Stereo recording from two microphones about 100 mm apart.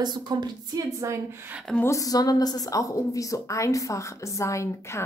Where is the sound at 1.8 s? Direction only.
35° left (ahead or behind).